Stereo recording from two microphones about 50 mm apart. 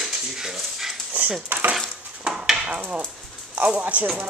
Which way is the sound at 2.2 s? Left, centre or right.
Centre.